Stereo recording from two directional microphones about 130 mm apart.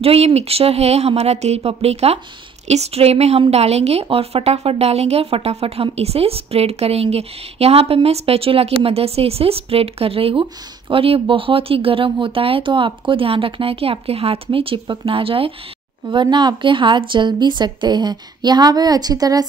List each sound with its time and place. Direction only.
0.0 s a woman's voice: 50° right (ahead or behind); by 19.4 s 30° right (ahead or behind)